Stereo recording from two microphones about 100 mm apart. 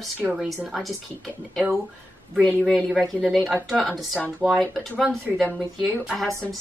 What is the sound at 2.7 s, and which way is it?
A woman's voice, 5° left (ahead or behind).